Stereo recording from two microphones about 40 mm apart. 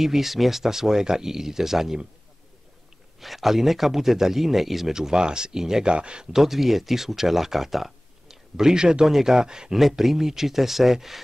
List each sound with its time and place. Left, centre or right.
0.0 s speech: centre
3.2 s speech: centre
4.9 s speech: centre
5.9 s speech: right
6.3 s speech: centre
9.8 s speech: centre